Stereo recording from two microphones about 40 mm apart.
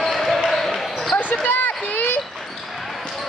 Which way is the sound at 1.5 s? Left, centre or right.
Left.